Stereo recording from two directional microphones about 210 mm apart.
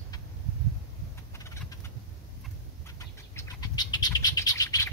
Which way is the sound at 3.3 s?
20° left (ahead or behind).